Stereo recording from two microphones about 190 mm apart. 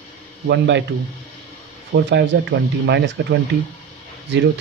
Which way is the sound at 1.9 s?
65° right (ahead or behind).